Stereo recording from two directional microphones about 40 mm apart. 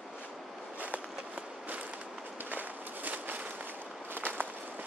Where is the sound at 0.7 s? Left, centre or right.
Right.